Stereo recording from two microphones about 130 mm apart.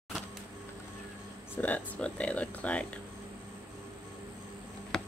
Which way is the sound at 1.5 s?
10° left (ahead or behind).